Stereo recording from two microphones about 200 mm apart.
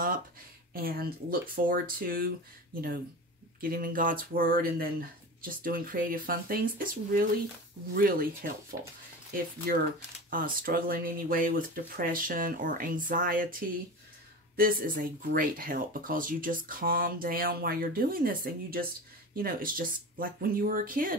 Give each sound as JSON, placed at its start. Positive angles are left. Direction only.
{"t": 0.7, "sound": "speech", "side_deg": -50}
{"t": 10.3, "sound": "speech", "side_deg": -45}